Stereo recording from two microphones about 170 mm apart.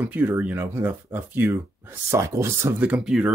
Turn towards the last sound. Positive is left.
turn(degrees=-5)  # may be behind; listen again after turning